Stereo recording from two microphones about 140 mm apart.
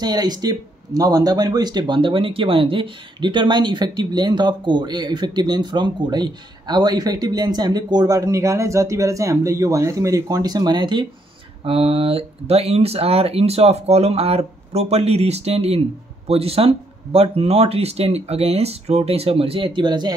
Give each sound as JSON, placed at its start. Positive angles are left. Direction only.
{"t": 0.0, "sound": "speech", "side_deg": -30}